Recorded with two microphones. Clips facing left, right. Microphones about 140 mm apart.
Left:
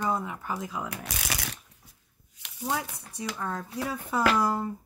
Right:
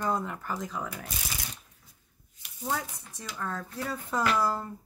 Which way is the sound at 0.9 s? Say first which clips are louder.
Left 4 dB; 75° left (ahead or behind).